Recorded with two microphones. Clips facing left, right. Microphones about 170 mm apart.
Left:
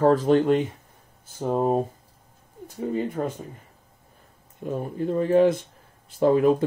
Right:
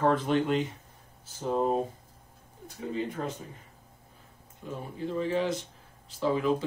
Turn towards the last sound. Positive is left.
turn(degrees=55)  # may be behind; listen again after turning